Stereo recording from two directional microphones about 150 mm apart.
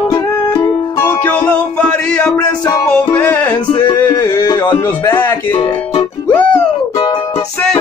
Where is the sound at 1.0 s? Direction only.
15° left (ahead or behind).